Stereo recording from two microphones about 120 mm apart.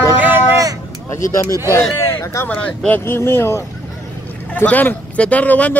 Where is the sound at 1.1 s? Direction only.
25° left (ahead or behind).